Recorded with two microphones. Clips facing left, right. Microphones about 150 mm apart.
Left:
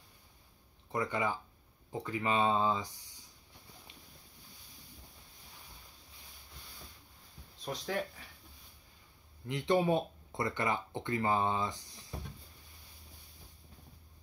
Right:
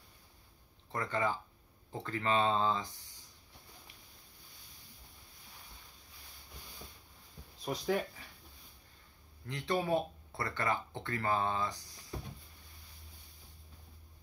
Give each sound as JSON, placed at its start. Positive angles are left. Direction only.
{"t": 0.9, "sound": "speech", "side_deg": 15}
{"t": 7.6, "sound": "speech", "side_deg": -5}
{"t": 9.5, "sound": "speech", "side_deg": 20}